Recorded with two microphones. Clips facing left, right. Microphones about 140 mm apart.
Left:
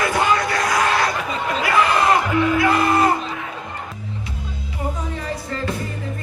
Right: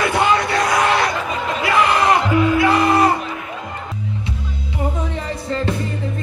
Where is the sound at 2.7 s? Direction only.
25° right (ahead or behind).